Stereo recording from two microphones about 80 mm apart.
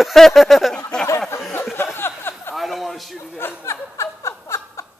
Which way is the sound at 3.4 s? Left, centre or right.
Left.